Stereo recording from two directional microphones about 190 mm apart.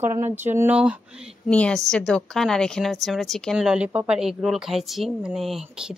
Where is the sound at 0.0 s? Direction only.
10° right (ahead or behind).